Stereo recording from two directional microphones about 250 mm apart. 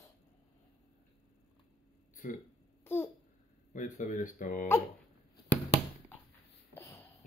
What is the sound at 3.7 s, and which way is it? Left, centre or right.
Speech, left.